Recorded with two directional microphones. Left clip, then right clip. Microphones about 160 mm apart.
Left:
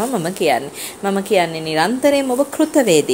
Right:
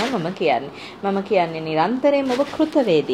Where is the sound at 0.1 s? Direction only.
50° left (ahead or behind).